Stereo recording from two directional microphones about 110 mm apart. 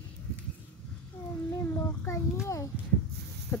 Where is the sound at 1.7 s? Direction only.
25° left (ahead or behind).